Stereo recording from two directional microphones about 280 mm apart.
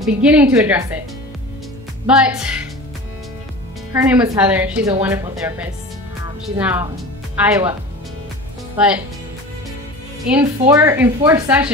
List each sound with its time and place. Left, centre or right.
0.0 s a woman's voice: centre
2.0 s a woman's voice: centre
3.9 s a woman's voice: centre
8.7 s speech: centre
10.3 s a woman's voice: centre